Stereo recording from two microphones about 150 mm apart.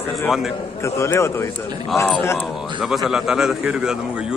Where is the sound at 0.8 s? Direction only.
20° left (ahead or behind).